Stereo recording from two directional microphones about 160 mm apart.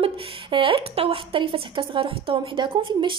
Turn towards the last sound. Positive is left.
turn(degrees=-30)  # may be behind; listen again after turning